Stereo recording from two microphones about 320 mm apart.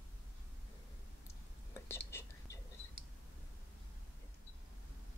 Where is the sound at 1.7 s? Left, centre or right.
Centre.